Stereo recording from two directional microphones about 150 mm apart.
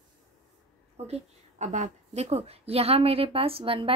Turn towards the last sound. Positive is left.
turn(degrees=-35)  # may be behind; listen again after turning